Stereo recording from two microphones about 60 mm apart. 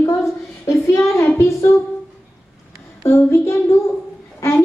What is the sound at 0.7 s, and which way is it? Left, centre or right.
Child singing, left.